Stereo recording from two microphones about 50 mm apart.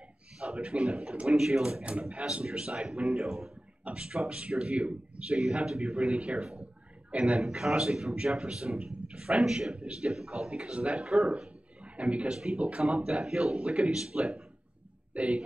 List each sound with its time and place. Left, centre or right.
0.4 s speech: centre
3.8 s a man's voice: centre
7.3 s speech: centre
10.7 s a man's voice: right
11.8 s a man's voice: right
12.4 s speech: centre
12.6 s a man's voice: right